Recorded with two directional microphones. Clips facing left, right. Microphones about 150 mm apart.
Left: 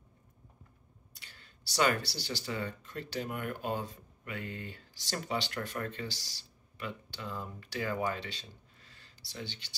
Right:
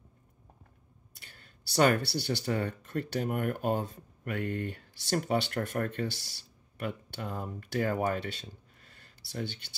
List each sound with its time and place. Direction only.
1.2 s speech: 50° right (ahead or behind)